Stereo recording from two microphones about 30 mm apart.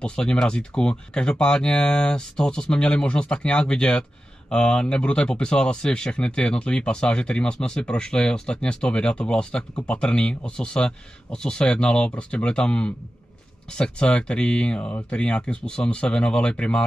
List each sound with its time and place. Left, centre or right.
0.0 s speech: left
14.8 s speech: left
15.0 s speech: left